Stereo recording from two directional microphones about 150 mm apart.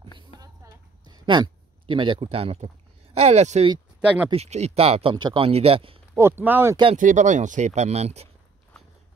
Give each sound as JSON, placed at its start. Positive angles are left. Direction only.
{"t": 1.0, "sound": "speech", "side_deg": -30}
{"t": 4.0, "sound": "speech", "side_deg": -10}
{"t": 4.3, "sound": "speech", "side_deg": -45}
{"t": 6.1, "sound": "speech", "side_deg": -15}
{"t": 7.0, "sound": "speech", "side_deg": -60}